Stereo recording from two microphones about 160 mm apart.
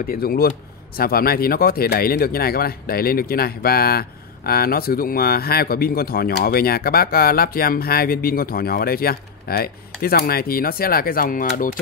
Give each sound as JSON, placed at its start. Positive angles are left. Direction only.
{"t": 0.0, "sound": "speech", "side_deg": 65}